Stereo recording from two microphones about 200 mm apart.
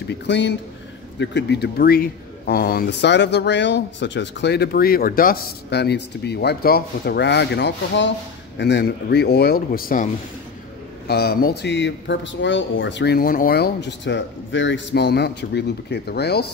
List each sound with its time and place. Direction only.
0.1 s speech: 60° left (ahead or behind)
11.1 s speech: 55° left (ahead or behind)